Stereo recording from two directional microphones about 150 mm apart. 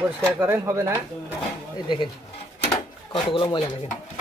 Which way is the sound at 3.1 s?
35° left (ahead or behind).